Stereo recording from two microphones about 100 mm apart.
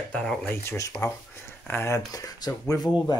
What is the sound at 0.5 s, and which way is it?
Speech, 30° left (ahead or behind).